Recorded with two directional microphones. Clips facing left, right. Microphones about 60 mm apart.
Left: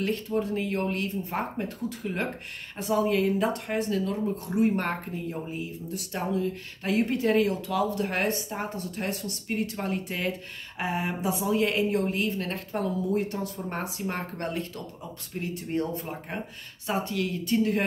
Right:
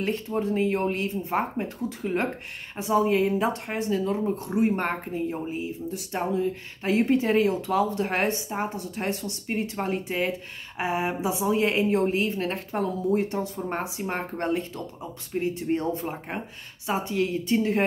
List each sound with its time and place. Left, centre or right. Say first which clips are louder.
0.0 s speech: right 1 dB; right